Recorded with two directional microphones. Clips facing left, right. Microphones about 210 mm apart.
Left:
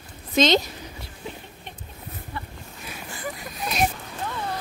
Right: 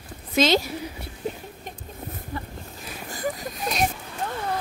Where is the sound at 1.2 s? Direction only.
45° right (ahead or behind).